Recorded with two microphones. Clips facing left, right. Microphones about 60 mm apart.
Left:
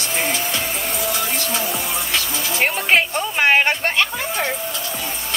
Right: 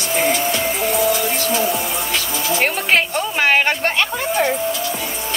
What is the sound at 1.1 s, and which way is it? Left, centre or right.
Music, right.